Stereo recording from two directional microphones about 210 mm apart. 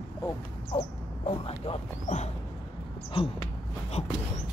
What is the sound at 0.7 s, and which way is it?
Speech, 30° left (ahead or behind).